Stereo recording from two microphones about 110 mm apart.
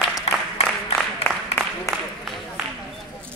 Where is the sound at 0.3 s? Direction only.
70° left (ahead or behind).